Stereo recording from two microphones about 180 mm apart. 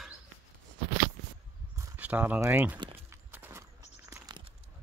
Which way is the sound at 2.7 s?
25° right (ahead or behind).